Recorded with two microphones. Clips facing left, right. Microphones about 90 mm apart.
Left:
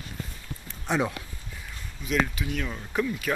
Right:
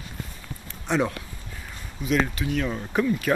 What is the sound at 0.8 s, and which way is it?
Speech, 5° left (ahead or behind).